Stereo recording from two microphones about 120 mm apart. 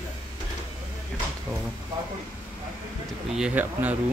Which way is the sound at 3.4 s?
15° right (ahead or behind).